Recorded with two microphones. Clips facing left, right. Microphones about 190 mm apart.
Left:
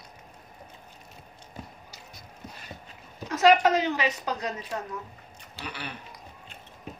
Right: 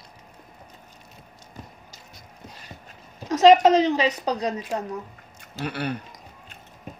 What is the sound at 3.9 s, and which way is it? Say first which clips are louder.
Speech: right 5 dB; 35° right (ahead or behind).